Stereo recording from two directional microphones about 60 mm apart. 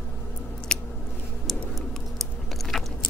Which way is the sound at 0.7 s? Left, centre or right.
Centre.